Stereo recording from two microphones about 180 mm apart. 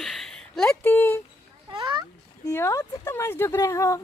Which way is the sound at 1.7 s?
25° right (ahead or behind).